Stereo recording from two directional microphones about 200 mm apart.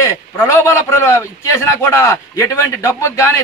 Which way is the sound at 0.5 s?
15° left (ahead or behind).